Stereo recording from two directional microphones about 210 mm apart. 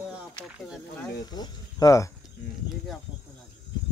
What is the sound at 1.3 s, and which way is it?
Speech, 20° left (ahead or behind).